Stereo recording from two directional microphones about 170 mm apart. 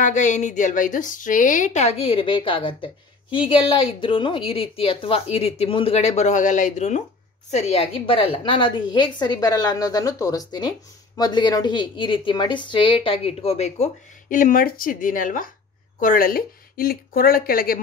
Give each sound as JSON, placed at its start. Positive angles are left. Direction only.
{"t": 0.0, "sound": "a woman's voice", "side_deg": 45}
{"t": 14.3, "sound": "speech", "side_deg": 55}